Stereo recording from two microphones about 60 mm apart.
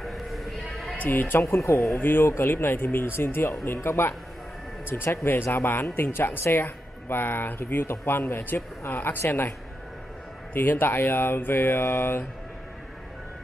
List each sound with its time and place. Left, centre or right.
0.0 s sheep: centre
0.9 s speech: left
1.4 s speech: left
2.0 s speech: left
10.5 s speech: left